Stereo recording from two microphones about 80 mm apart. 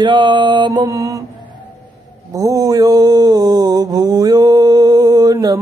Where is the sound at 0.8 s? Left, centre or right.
Right.